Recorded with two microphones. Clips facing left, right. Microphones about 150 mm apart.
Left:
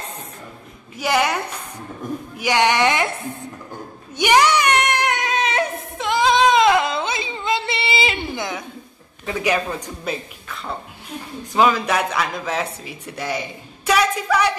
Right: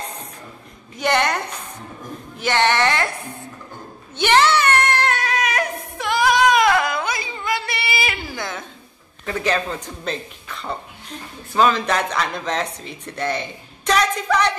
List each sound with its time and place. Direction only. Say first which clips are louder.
0.9 s speech: even; 5° left (ahead or behind)
4.2 s a sound: even; 15° left (ahead or behind)
9.2 s speech: left 1 dB; 10° left (ahead or behind)
11.5 s speech: even; 10° left (ahead or behind)